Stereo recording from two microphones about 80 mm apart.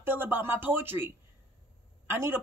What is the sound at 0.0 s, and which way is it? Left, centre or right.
Speech, right.